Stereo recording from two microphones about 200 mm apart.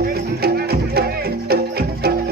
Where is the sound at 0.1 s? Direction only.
50° right (ahead or behind).